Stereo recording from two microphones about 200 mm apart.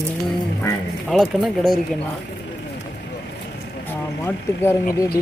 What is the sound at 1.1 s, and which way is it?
Speech, centre (ahead or behind).